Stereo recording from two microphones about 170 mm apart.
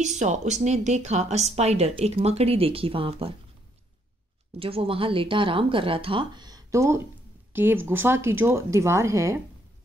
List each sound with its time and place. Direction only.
0.0 s speech: 45° right (ahead or behind)
4.6 s speech: 35° right (ahead or behind); by 9.4 s 15° right (ahead or behind)